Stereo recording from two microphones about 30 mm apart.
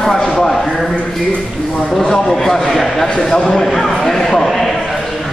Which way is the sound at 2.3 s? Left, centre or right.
Centre.